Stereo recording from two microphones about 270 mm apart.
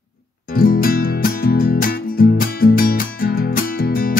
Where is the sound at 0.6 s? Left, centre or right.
Left.